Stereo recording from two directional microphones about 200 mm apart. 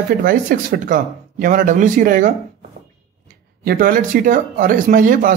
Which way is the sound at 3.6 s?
45° right (ahead or behind).